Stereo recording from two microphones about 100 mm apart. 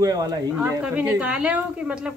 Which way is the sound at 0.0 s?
40° right (ahead or behind).